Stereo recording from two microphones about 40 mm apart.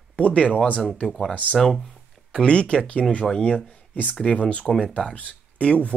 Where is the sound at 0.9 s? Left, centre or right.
Centre.